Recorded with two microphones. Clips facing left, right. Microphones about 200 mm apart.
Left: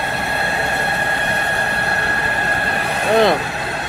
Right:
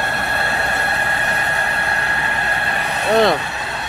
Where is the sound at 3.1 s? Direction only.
Centre (ahead or behind).